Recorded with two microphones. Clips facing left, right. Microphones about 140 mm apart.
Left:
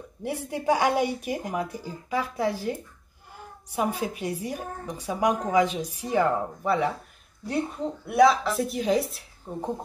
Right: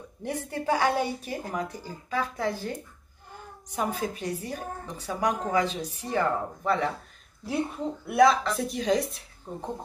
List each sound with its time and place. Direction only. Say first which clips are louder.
0.2 s a woman's voice: left 1 dB; 10° left (ahead or behind)
8.1 s a woman's voice: left 1 dB; centre (ahead or behind)